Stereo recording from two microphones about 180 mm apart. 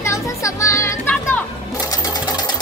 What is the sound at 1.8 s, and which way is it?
Sewing machine, 20° left (ahead or behind).